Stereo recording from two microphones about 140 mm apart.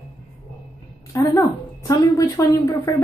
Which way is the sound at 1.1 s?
25° left (ahead or behind).